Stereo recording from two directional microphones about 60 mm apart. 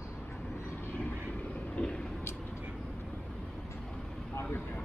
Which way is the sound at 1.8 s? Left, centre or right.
Left.